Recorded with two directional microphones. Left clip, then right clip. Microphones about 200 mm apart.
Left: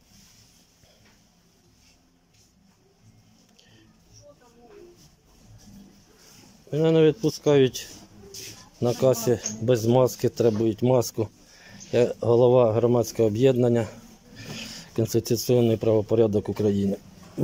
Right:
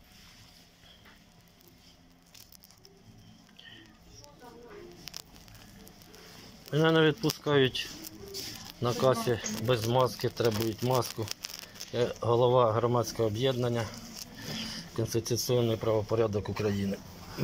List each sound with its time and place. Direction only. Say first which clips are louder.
6.7 s speech: left 5 dB; 25° left (ahead or behind)
8.8 s speech: left 5 dB; 30° left (ahead or behind)